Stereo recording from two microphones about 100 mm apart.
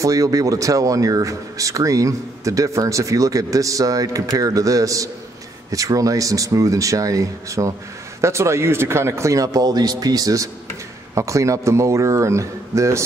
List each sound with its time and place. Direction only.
0.0 s speech: 35° right (ahead or behind)